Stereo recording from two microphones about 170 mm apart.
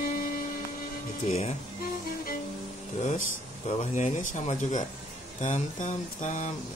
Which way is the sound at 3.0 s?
45° left (ahead or behind).